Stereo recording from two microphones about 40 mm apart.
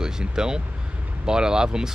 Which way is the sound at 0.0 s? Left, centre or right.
Centre.